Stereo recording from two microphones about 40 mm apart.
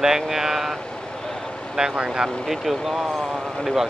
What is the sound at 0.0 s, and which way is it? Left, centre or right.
Speech, centre.